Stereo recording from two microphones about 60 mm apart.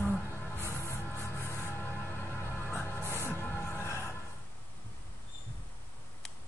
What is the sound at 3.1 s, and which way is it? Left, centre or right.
Train, left.